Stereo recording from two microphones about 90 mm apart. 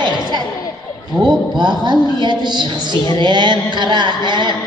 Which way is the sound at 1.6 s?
55° right (ahead or behind).